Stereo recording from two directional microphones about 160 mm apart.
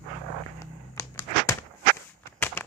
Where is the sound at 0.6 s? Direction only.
20° left (ahead or behind).